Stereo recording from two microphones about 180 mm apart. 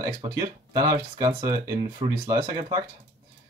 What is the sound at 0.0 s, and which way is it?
Speech, 20° right (ahead or behind).